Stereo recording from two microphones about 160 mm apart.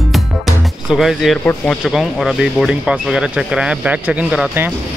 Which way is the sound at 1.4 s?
5° left (ahead or behind).